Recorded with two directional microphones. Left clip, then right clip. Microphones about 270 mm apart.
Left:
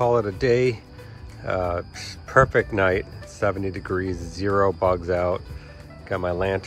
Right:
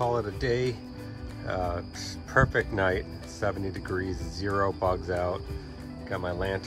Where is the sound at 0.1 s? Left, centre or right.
Centre.